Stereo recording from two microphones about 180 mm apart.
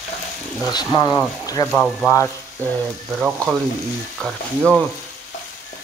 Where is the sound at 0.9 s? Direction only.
20° left (ahead or behind).